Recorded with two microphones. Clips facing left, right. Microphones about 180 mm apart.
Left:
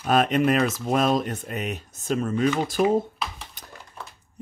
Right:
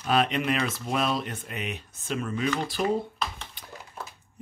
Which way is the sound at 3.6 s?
45° left (ahead or behind).